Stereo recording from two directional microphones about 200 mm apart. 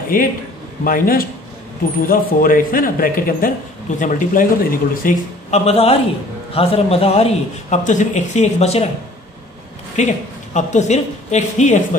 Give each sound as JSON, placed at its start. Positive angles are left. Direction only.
{"t": 0.1, "sound": "speech", "side_deg": 45}
{"t": 5.7, "sound": "a man's voice", "side_deg": 30}
{"t": 9.9, "sound": "a woman's voice", "side_deg": 35}